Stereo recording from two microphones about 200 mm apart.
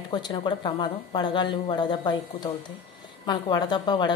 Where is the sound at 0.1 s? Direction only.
25° left (ahead or behind).